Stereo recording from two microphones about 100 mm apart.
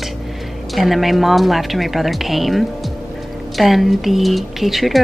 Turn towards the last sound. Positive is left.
turn(degrees=0)  # may be behind; listen again after turning